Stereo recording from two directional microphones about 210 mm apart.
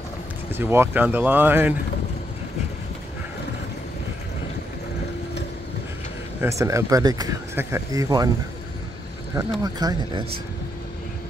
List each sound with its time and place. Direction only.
0.5 s speech: 10° right (ahead or behind)
6.4 s speech: 15° right (ahead or behind)
9.6 s speech: 20° right (ahead or behind)